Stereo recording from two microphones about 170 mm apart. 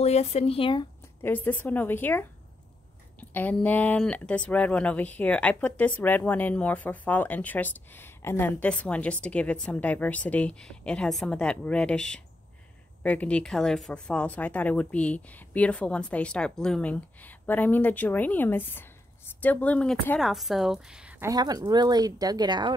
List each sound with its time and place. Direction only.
0.0 s speech: 40° left (ahead or behind)
1.2 s speech: 10° left (ahead or behind); by 21.3 s 5° right (ahead or behind)
21.3 s speech: 20° right (ahead or behind)